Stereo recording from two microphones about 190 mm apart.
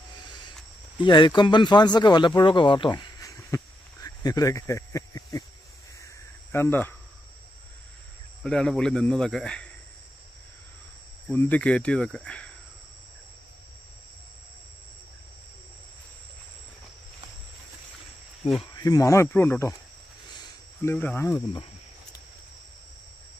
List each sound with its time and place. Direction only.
0.3 s a sound: 25° left (ahead or behind)
1.0 s speech: 25° left (ahead or behind)
6.5 s speech: 10° left (ahead or behind)
8.4 s speech: 5° left (ahead or behind)
11.2 s speech: 10° left (ahead or behind)
18.8 s speech: 20° left (ahead or behind)
20.8 s speech: 10° left (ahead or behind)